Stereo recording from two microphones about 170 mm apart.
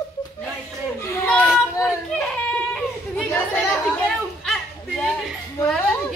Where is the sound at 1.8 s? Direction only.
5° left (ahead or behind).